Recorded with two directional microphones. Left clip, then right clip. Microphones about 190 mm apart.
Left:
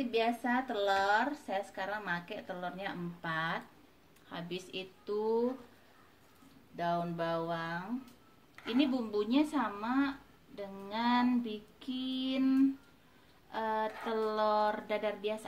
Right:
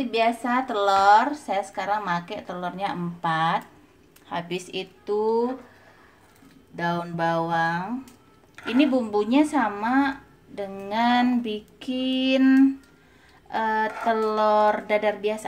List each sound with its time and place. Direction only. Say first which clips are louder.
0.0 s a woman's voice: right 9 dB; 20° right (ahead or behind)
6.8 s speech: right 8 dB; 25° right (ahead or behind)